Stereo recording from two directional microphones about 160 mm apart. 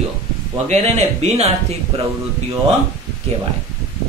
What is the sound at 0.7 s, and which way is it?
Speech, 45° right (ahead or behind).